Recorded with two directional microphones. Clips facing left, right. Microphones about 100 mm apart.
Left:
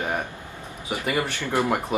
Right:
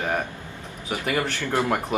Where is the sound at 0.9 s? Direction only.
10° left (ahead or behind).